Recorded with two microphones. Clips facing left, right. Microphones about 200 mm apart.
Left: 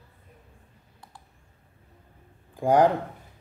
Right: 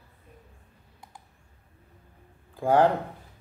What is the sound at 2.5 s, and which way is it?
Speech, 15° left (ahead or behind).